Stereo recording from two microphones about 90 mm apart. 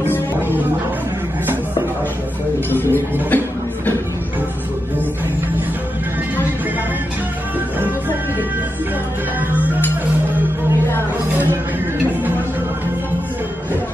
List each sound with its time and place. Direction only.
0.0 s music: 25° left (ahead or behind)
2.7 s music: 20° left (ahead or behind)